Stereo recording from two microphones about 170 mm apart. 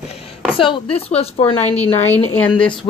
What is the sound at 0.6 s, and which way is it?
Speech, 30° left (ahead or behind).